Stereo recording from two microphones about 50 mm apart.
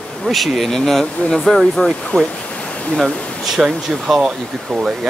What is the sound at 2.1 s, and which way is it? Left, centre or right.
Speech, left.